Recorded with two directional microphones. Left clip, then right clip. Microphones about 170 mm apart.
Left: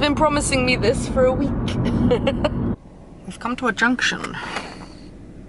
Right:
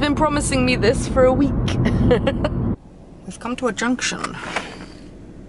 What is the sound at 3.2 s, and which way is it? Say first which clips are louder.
Speech: left 1 dB; 5° left (ahead or behind).